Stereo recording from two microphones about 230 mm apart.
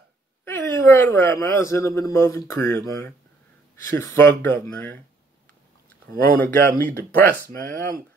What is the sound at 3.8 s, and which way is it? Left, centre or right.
A man's voice, centre.